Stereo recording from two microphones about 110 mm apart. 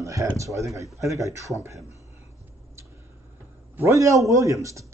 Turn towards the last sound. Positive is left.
turn(degrees=-30)  # may be behind; listen again after turning